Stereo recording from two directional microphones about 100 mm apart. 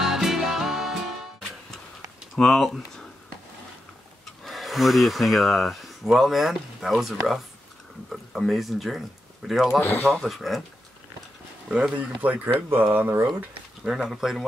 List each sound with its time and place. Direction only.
0.0 s music: 5° right (ahead or behind)
2.3 s speech: centre (ahead or behind)
4.5 s speech: centre (ahead or behind)
11.7 s speech: 15° right (ahead or behind)
13.8 s speech: 5° right (ahead or behind)